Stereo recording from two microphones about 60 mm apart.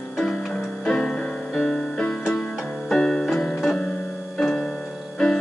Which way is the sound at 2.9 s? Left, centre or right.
Centre.